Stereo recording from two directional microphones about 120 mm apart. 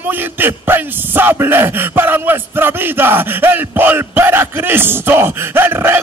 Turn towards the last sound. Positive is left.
turn(degrees=-20)  # may be behind; listen again after turning